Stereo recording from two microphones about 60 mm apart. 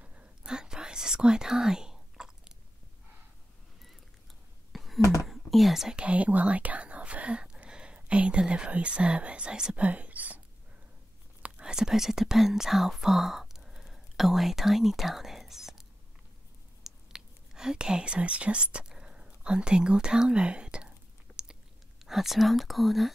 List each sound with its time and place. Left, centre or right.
0.0 s whispering: right
4.7 s a sound: centre
5.2 s whispering: centre
5.9 s speech: right
9.8 s whispering: right
11.4 s speech: centre
16.8 s whispering: centre
22.0 s speech: centre